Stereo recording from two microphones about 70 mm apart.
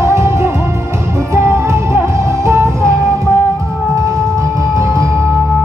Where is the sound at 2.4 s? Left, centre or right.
Right.